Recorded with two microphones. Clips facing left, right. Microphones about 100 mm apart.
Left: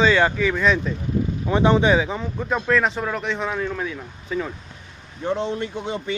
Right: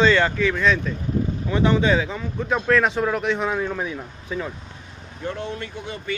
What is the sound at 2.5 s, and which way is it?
Speech, centre (ahead or behind).